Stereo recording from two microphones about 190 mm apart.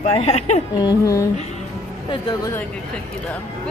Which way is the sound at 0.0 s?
35° left (ahead or behind).